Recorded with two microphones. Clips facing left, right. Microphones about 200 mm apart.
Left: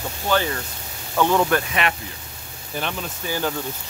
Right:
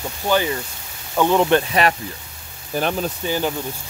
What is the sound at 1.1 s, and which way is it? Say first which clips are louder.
Speech: right 3 dB; 15° right (ahead or behind).